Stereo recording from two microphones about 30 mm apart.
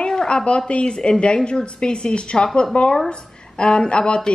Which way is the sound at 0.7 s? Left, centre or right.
Left.